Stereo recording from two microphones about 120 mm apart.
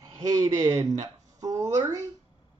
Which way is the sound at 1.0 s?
30° right (ahead or behind).